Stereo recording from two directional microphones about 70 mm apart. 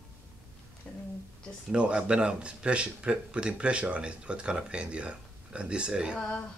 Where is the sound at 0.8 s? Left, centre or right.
Centre.